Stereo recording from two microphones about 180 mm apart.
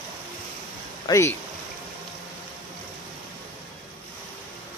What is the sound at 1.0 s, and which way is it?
Speech, 15° left (ahead or behind).